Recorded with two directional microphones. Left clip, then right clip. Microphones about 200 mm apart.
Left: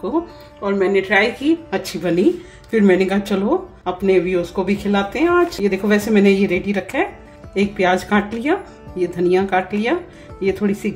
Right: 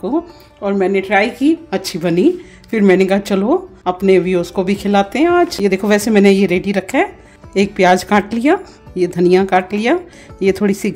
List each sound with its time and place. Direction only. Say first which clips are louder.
0.6 s speech: right 2 dB; 40° right (ahead or behind)